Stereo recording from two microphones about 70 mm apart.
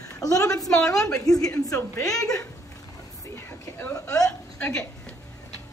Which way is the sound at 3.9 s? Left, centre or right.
Left.